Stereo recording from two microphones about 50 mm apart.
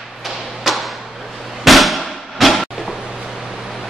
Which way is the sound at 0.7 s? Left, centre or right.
Centre.